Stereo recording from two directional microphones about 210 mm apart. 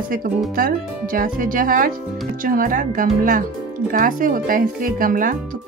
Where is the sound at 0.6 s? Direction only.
45° right (ahead or behind).